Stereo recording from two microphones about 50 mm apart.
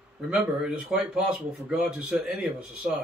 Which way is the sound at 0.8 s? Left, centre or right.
Centre.